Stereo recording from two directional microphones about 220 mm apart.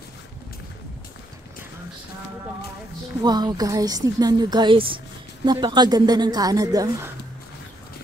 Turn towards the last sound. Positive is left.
turn(degrees=-15)  # may be behind; listen again after turning